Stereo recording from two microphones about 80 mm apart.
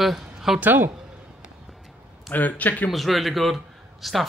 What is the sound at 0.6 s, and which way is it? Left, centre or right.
Speech, right.